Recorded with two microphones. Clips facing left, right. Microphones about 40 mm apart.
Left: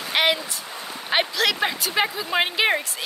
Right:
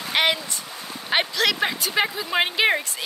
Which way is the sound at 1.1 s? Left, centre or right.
Centre.